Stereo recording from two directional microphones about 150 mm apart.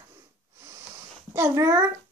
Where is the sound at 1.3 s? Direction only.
20° right (ahead or behind).